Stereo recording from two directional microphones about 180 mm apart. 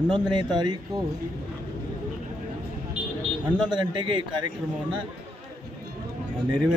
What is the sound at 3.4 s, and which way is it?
Speech, 25° right (ahead or behind).